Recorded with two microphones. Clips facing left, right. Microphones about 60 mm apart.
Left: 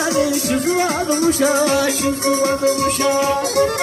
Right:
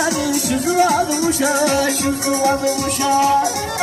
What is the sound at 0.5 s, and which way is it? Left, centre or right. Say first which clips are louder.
Music: right 2 dB; left.